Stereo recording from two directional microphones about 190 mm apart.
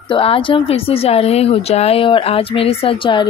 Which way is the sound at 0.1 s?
30° left (ahead or behind).